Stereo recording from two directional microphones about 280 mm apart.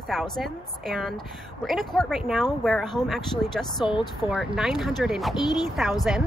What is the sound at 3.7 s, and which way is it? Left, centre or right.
Speech, centre.